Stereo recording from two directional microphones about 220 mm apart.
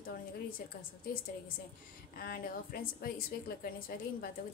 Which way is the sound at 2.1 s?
40° left (ahead or behind).